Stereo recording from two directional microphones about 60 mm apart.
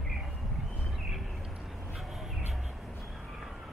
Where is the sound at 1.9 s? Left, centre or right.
Centre.